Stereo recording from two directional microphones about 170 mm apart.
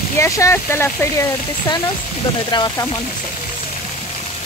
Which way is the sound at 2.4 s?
25° left (ahead or behind).